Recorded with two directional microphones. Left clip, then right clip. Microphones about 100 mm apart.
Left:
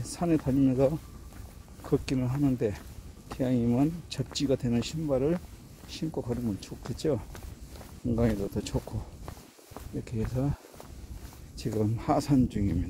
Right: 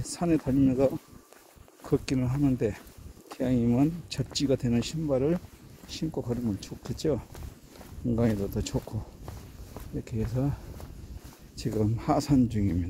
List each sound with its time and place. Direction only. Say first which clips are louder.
0.0 s speech: right 1 dB; centre (ahead or behind)
10.0 s speech: right 1 dB; centre (ahead or behind)